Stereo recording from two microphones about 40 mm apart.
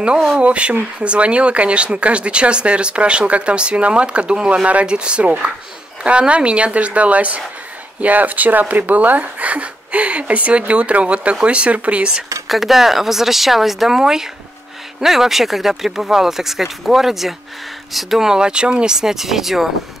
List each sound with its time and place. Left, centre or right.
0.4 s speech: right
12.4 s speech: centre
18.3 s speech: right
18.9 s speech: centre